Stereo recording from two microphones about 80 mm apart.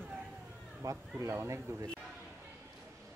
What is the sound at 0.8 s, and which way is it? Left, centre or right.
Speech, right.